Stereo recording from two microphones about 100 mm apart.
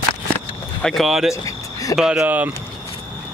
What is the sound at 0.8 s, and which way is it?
Speech, centre (ahead or behind).